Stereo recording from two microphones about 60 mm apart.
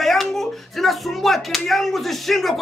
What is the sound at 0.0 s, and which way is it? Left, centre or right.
Speech, centre.